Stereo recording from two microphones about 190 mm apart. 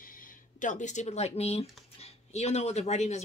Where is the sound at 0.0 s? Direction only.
45° left (ahead or behind).